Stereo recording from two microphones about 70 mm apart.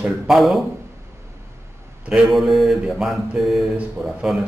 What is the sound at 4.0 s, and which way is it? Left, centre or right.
Speech, right.